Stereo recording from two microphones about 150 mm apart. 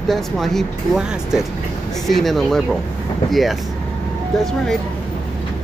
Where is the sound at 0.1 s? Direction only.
Centre (ahead or behind).